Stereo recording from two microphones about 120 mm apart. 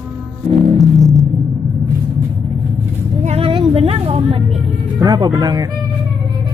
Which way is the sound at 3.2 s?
55° right (ahead or behind).